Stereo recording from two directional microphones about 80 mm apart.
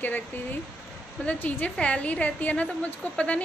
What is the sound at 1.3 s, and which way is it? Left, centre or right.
A woman's voice, left.